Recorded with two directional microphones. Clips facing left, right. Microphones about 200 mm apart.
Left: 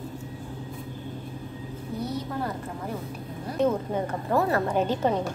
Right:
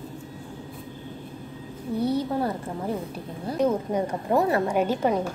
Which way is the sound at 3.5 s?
15° right (ahead or behind).